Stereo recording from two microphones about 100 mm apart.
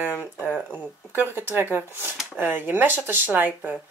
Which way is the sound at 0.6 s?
15° right (ahead or behind).